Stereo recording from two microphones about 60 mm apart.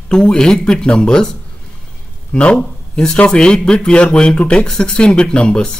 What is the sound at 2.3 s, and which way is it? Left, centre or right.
A man's voice, centre.